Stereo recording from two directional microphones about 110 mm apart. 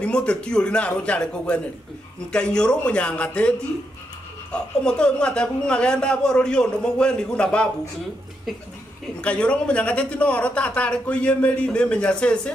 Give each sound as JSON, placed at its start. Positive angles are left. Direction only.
{"t": 0.0, "sound": "a man's voice", "side_deg": 10}
{"t": 9.2, "sound": "a man's voice", "side_deg": 10}